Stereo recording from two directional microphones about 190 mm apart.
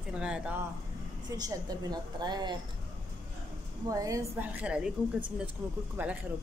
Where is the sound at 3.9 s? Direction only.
15° right (ahead or behind).